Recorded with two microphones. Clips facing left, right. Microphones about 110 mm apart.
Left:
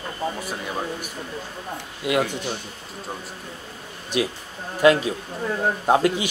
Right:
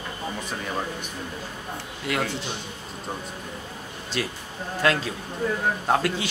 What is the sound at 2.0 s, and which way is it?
Speech, 15° left (ahead or behind).